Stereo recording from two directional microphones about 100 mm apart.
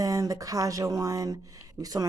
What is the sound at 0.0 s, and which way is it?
Speech, 35° right (ahead or behind).